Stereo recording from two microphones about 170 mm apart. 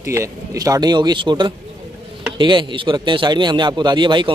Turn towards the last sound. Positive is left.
turn(degrees=-25)  # may be behind; listen again after turning